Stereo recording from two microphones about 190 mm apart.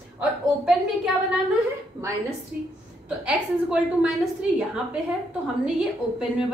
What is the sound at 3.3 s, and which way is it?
A woman's voice, 5° right (ahead or behind).